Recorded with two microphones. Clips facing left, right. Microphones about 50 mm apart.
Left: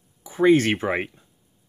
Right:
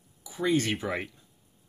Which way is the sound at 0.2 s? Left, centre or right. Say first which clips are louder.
Left 10 dB; left.